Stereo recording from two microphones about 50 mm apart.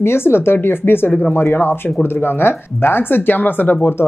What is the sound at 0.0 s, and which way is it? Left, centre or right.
Speech, left.